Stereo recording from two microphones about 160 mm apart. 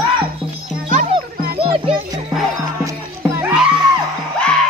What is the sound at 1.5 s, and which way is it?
Music, 35° right (ahead or behind).